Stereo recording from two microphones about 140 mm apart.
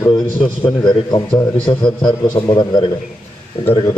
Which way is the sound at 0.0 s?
30° left (ahead or behind).